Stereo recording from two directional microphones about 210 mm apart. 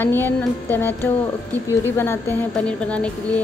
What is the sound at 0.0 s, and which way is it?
A woman's voice, 10° left (ahead or behind).